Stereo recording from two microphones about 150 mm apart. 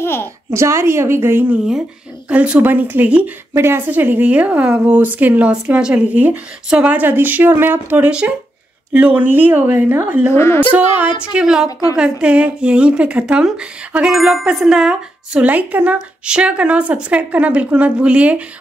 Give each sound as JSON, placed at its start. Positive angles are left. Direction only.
{"t": 0.0, "sound": "a sound", "side_deg": 15}
{"t": 0.5, "sound": "speech", "side_deg": -20}
{"t": 10.3, "sound": "a woman's voice", "side_deg": 15}
{"t": 11.0, "sound": "speech", "side_deg": -5}